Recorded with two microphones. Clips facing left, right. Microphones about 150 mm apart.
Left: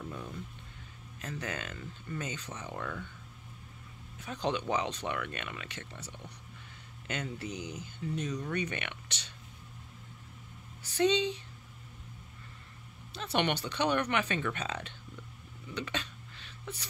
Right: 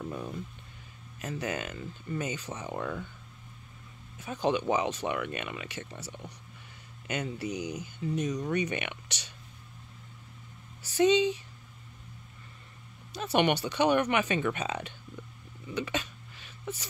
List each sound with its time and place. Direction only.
0.0 s a sound: 25° right (ahead or behind)
1.2 s speech: 10° right (ahead or behind)
4.2 s speech: 5° right (ahead or behind)
11.0 s speech: 10° right (ahead or behind)
13.2 s speech: 10° right (ahead or behind)
15.7 s a sound: 10° right (ahead or behind)